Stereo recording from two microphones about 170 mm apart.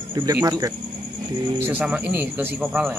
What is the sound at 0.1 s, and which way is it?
Speech, 20° right (ahead or behind).